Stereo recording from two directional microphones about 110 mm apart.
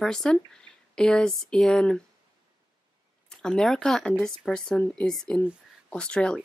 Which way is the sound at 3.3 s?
5° left (ahead or behind).